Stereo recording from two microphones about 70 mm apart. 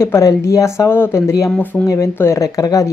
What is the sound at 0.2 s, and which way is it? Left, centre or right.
Speech, left.